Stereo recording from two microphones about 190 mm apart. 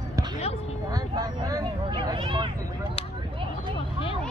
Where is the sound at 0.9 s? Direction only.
20° right (ahead or behind).